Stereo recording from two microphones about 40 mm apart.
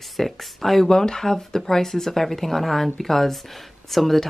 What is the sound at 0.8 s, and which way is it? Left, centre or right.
Speech, centre.